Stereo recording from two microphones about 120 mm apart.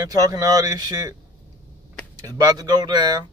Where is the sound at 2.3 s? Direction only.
30° right (ahead or behind).